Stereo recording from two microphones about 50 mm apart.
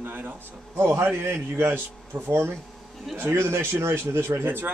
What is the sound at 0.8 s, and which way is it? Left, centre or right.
Speech, right.